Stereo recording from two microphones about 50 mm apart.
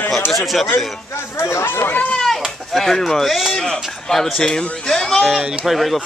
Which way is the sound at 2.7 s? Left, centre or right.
Centre.